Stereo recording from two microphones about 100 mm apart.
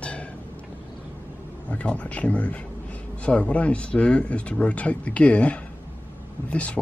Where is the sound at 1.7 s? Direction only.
10° left (ahead or behind).